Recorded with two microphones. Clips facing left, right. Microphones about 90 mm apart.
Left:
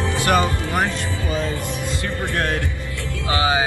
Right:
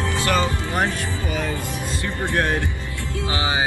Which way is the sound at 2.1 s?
20° right (ahead or behind).